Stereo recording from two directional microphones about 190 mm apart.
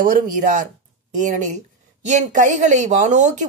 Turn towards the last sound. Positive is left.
turn(degrees=-40)  # may be behind; listen again after turning